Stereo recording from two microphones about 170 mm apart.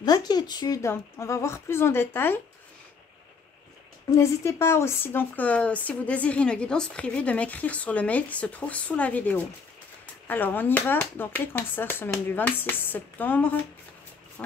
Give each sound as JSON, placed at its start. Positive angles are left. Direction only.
{"t": 0.0, "sound": "speech", "side_deg": 25}
{"t": 4.1, "sound": "speech", "side_deg": 15}